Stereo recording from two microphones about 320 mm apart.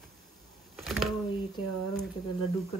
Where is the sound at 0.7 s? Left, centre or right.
Centre.